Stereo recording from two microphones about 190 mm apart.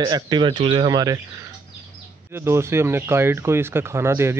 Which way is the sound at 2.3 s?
15° right (ahead or behind).